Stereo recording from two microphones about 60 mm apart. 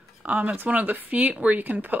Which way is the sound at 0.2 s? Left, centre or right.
Right.